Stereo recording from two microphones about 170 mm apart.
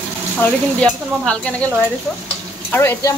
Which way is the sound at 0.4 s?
5° left (ahead or behind).